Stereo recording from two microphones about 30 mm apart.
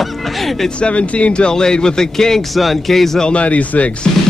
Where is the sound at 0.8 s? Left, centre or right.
Left.